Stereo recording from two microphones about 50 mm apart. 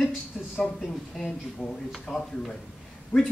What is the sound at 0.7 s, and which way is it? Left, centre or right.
Speech, centre.